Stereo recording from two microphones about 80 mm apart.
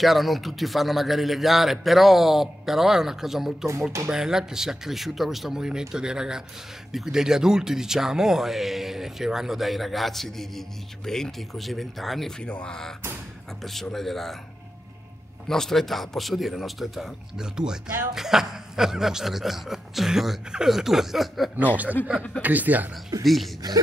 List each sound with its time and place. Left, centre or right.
0.0 s speech: centre
15.4 s speech: centre
22.0 s speech: left
22.4 s speech: right
23.2 s speech: centre